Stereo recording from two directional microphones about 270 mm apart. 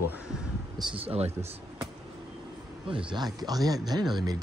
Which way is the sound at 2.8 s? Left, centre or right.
Centre.